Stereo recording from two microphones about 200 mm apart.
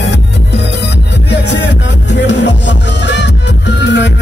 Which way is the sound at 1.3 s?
60° left (ahead or behind).